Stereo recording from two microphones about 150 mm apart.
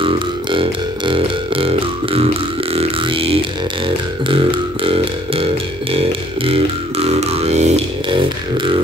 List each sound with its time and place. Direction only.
0.0 s burping: 35° right (ahead or behind)
2.7 s didgeridoo: 40° right (ahead or behind)
4.3 s a sound: 35° right (ahead or behind)
7.1 s music: 45° right (ahead or behind)
8.1 s beatboxing: 35° right (ahead or behind)